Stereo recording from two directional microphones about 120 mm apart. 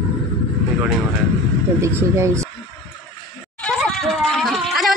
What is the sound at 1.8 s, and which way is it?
Speech, 25° right (ahead or behind).